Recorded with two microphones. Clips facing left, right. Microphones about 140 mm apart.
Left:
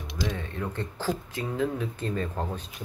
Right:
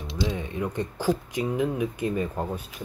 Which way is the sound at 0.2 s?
20° right (ahead or behind).